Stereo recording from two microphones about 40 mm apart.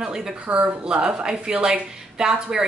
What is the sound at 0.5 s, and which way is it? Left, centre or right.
A woman's voice, right.